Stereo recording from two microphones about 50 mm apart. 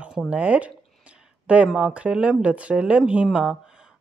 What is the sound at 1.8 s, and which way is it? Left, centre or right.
Speech, right.